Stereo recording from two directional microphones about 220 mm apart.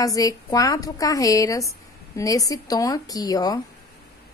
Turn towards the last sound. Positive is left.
turn(degrees=15)  # may be behind; listen again after turning